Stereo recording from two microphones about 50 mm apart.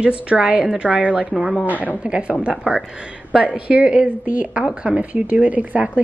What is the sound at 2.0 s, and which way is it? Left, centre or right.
Speech, right.